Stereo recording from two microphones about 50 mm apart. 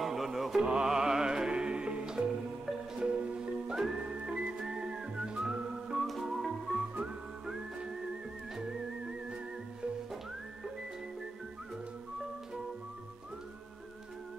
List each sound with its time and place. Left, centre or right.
0.0 s mantra: centre
0.7 s music: centre
4.0 s music: right
4.6 s whistling: centre
6.2 s music: centre